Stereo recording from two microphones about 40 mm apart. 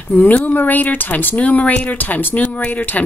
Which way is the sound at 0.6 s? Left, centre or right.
Left.